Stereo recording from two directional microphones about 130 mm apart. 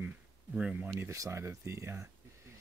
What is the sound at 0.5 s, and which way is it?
Speech, 10° right (ahead or behind).